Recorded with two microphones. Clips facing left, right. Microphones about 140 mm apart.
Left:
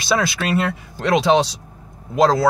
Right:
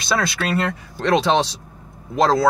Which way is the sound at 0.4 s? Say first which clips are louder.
Left 1 dB; 5° left (ahead or behind).